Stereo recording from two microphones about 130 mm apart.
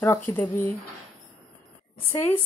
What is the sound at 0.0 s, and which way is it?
Speech, 20° left (ahead or behind).